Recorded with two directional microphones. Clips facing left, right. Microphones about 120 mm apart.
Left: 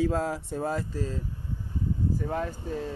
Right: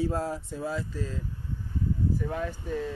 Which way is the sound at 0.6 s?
50° left (ahead or behind).